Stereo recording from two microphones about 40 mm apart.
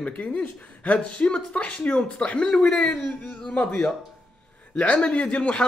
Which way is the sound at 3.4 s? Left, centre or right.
Left.